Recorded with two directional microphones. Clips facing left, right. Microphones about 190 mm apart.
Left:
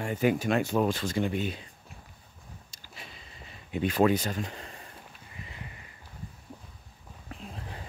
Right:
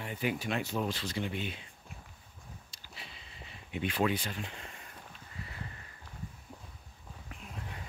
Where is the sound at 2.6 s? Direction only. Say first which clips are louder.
Left 3 dB; 45° left (ahead or behind).